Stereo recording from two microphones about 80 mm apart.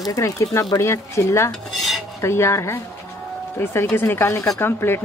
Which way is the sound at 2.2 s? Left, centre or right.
Left.